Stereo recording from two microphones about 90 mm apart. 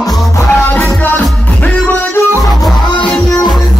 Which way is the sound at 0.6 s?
25° left (ahead or behind).